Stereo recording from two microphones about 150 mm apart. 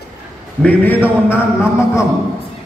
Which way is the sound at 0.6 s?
10° left (ahead or behind).